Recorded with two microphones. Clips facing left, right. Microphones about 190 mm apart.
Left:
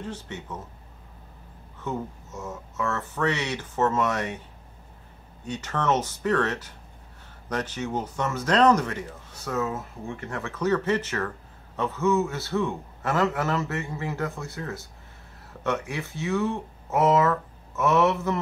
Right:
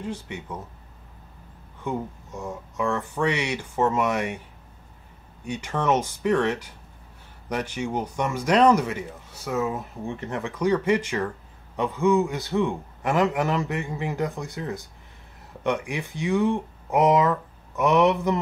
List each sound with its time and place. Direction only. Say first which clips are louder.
0.0 s speech: right 3 dB; 10° right (ahead or behind)
1.9 s speech: right 2 dB; 15° right (ahead or behind)
5.4 s speech: right 2 dB; 10° right (ahead or behind)